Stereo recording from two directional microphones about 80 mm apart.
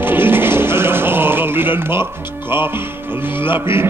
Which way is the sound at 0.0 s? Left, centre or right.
Right.